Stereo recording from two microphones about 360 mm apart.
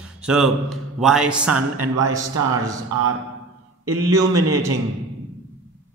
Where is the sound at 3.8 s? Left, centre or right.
Right.